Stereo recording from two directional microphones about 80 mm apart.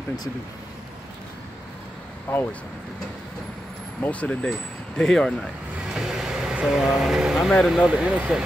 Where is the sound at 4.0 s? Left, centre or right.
Centre.